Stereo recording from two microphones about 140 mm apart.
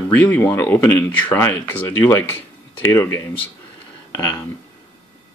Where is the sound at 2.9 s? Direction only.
15° left (ahead or behind).